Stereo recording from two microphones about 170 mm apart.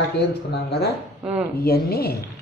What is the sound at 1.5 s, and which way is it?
Speech, 65° left (ahead or behind).